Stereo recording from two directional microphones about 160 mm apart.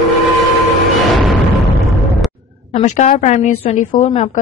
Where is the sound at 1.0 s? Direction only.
Centre (ahead or behind).